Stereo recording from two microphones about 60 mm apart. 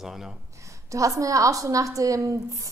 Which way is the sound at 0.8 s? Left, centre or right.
Right.